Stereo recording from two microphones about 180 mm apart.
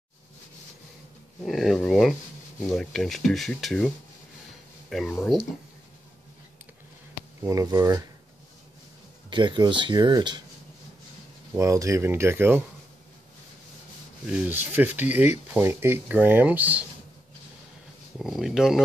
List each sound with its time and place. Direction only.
1.4 s speech: centre (ahead or behind)
7.4 s speech: 15° right (ahead or behind)
9.3 s speech: 25° right (ahead or behind)
11.5 s speech: 15° right (ahead or behind)
14.2 s speech: 10° right (ahead or behind)
18.2 s speech: centre (ahead or behind)